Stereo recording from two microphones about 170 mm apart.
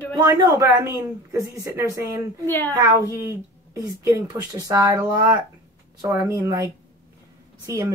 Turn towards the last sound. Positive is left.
turn(degrees=-20)  # may be behind; listen again after turning